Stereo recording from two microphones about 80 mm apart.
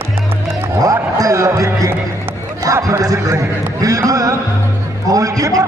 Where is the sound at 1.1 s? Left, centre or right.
Right.